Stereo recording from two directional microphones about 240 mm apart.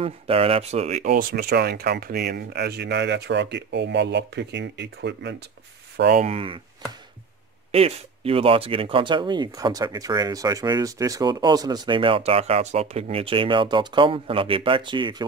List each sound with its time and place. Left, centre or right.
0.0 s speech: right
6.2 s speech: right
7.7 s speech: right